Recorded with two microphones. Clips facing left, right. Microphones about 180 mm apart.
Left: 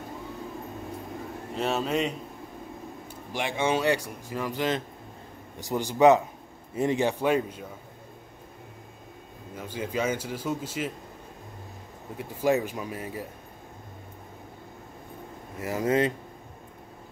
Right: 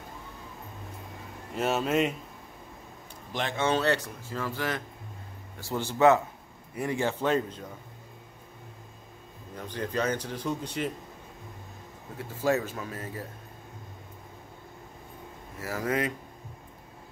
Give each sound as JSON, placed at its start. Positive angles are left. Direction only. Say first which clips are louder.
{"t": 1.6, "sound": "speech", "louder": "right 1 dB", "side_deg": 0}
{"t": 3.3, "sound": "speech", "louder": "left 1 dB", "side_deg": 10}
{"t": 9.6, "sound": "speech", "louder": "left 1 dB", "side_deg": 10}
{"t": 12.2, "sound": "speech", "louder": "left 2 dB", "side_deg": 15}
{"t": 15.6, "sound": "speech", "louder": "left 5 dB", "side_deg": 20}